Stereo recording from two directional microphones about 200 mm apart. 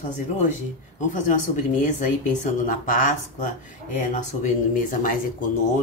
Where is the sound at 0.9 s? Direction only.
40° left (ahead or behind).